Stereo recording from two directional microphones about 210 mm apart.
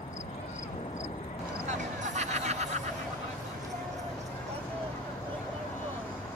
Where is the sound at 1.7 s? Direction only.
35° right (ahead or behind).